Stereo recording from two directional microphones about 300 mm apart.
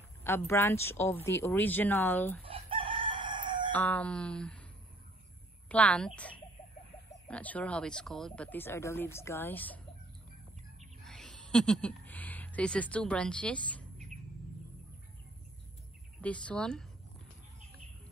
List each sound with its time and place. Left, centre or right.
0.2 s speech: centre
2.4 s chicken: centre
3.7 s speech: centre
5.7 s speech: centre
11.1 s speech: centre
16.2 s speech: centre